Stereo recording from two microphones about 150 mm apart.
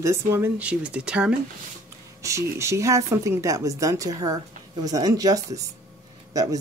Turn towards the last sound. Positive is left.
turn(degrees=-25)  # may be behind; listen again after turning